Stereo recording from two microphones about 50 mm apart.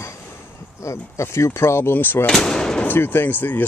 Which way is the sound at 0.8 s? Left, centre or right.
Left.